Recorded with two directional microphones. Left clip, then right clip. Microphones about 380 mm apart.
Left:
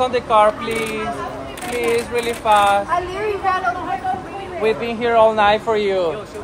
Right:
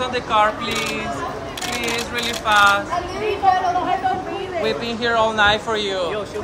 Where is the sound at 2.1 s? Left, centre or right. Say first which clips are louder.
Even; centre.